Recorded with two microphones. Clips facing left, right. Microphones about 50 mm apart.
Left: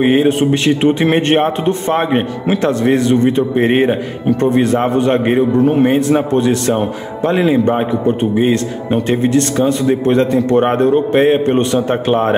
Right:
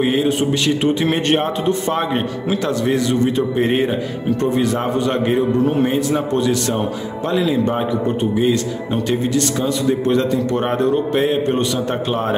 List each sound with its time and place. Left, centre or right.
0.0 s a man's voice: left